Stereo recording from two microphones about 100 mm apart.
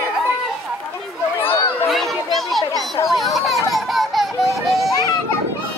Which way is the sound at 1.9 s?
Centre (ahead or behind).